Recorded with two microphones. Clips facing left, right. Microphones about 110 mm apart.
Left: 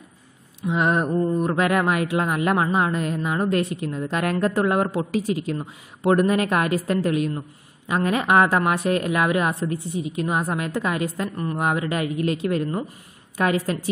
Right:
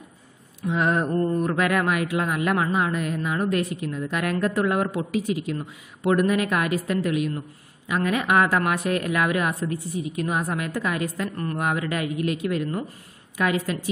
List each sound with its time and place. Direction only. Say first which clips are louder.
0.6 s a woman's voice: left 2 dB; 20° left (ahead or behind); by 13.7 s 35° left (ahead or behind)